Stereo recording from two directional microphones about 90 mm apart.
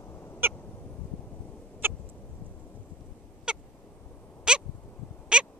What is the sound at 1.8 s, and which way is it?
Owl, 20° right (ahead or behind).